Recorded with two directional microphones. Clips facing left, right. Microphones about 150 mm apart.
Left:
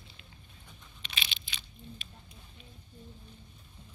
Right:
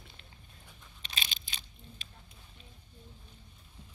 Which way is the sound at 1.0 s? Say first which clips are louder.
Even; 40° right (ahead or behind).